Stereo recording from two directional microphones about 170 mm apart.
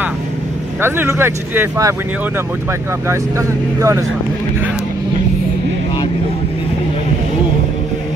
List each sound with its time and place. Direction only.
0.7 s speech: 15° right (ahead or behind)
3.1 s speech: 15° right (ahead or behind)